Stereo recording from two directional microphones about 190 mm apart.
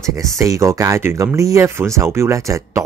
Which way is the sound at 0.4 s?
15° right (ahead or behind).